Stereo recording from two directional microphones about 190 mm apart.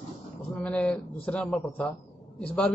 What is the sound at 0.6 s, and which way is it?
A man's voice, 5° left (ahead or behind).